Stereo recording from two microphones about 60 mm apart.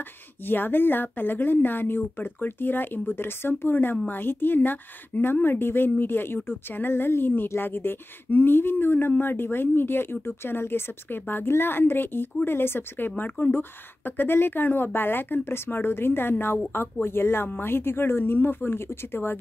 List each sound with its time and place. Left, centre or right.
0.5 s speech: left